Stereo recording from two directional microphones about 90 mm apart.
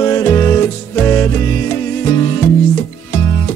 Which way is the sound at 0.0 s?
30° left (ahead or behind).